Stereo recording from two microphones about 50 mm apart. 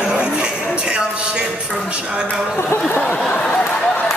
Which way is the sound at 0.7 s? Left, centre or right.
Centre.